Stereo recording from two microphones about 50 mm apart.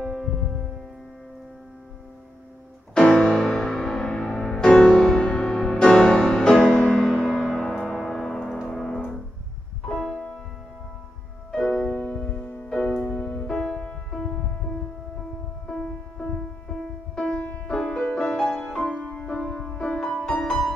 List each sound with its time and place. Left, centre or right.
0.0 s music: centre
2.9 s music: centre
3.4 s music: centre
5.2 s music: left; by 8.5 s centre
8.6 s piano: centre
9.9 s music: centre
11.5 s music: centre
11.9 s music: left
13.6 s music: centre
15.7 s music: centre
17.1 s music: centre